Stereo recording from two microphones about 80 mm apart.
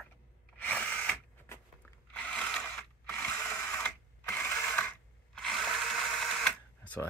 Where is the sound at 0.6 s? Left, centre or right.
Centre.